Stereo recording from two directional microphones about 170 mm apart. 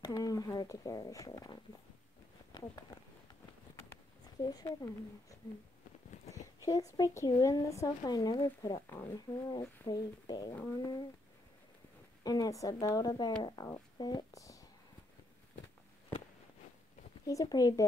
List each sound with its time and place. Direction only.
0.0 s speech: 20° left (ahead or behind)
2.5 s a sound: 25° left (ahead or behind)
4.4 s speech: 20° left (ahead or behind)
6.3 s speech: 20° left (ahead or behind)
10.5 s speech: 10° left (ahead or behind)
12.2 s speech: 20° left (ahead or behind)
17.3 s speech: 20° left (ahead or behind)